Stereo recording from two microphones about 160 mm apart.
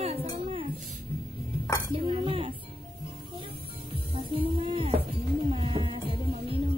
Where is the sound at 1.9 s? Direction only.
35° right (ahead or behind).